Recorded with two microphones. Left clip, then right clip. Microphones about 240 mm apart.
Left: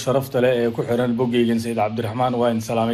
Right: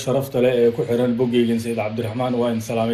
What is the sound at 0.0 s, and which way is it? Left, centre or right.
A man's voice, left.